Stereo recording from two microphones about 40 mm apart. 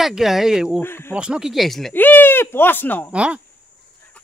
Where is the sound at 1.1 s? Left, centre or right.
Right.